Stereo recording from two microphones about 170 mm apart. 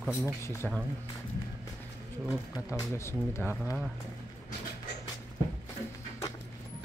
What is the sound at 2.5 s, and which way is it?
Speech, 15° left (ahead or behind).